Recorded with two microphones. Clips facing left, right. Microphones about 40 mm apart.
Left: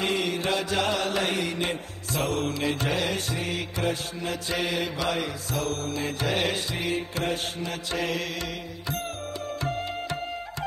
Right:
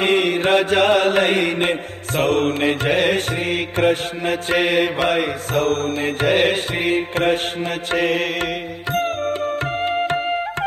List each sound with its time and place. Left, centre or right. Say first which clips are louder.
0.0 s mantra: right 9 dB; right
8.9 s music: right 14 dB; right